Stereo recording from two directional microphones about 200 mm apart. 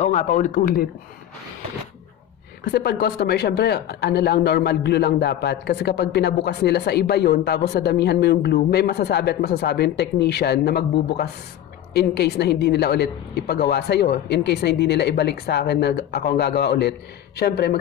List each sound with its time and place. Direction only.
0.0 s a man's voice: 35° left (ahead or behind)
2.6 s a woman's voice: 50° left (ahead or behind)